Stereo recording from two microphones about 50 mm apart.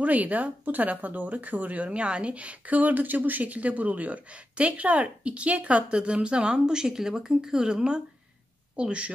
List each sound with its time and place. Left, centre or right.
0.0 s speech: right